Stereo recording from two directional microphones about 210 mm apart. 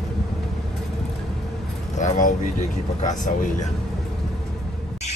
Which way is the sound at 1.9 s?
35° left (ahead or behind).